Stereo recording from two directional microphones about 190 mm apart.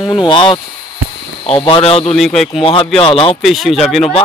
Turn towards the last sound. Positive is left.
turn(degrees=0)  # may be behind; listen again after turning